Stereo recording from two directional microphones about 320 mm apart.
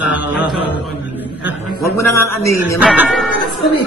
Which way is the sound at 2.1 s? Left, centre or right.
Left.